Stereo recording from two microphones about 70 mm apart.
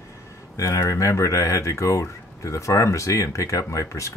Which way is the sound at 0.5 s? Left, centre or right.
Left.